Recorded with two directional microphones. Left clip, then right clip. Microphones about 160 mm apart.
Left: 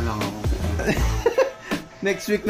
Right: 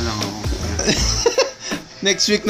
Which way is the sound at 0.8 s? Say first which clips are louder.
Right 6 dB; 5° right (ahead or behind).